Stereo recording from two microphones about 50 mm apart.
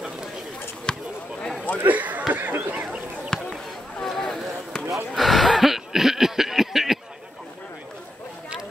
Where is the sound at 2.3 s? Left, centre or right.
Right.